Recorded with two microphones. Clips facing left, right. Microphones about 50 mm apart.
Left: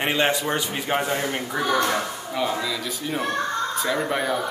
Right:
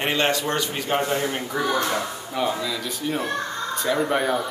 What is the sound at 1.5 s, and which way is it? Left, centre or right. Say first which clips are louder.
Speech: left 2 dB; left.